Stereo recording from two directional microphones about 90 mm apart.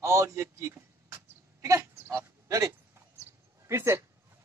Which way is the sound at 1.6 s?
35° right (ahead or behind).